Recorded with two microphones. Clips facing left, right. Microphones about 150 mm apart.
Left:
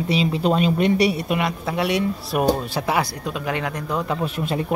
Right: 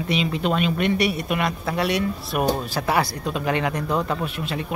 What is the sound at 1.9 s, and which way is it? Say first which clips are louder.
Speech: left 2 dB; 20° left (ahead or behind).